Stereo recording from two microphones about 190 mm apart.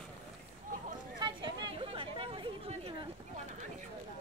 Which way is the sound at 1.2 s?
25° right (ahead or behind).